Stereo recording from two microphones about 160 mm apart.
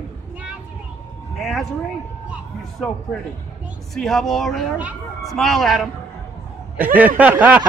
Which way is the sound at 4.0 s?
Centre (ahead or behind).